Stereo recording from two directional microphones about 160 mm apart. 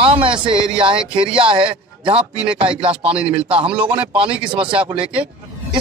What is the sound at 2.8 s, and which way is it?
Speech, 35° right (ahead or behind).